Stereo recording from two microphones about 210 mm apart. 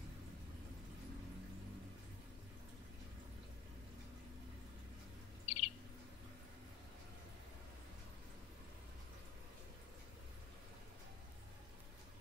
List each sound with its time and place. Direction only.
5.5 s bird: 35° left (ahead or behind)